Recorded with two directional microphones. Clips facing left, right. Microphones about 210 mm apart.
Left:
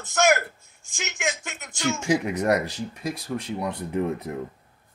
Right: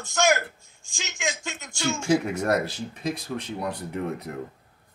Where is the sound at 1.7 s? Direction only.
15° left (ahead or behind).